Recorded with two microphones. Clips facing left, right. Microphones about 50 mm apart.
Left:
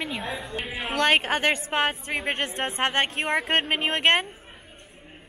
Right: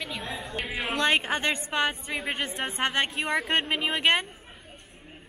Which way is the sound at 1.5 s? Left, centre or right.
Left.